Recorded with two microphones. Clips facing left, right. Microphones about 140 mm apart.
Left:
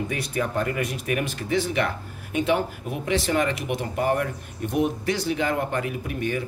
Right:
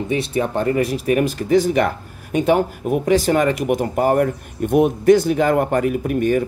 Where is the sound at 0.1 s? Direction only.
25° right (ahead or behind).